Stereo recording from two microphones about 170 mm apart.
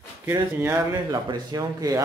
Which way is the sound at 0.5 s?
15° right (ahead or behind).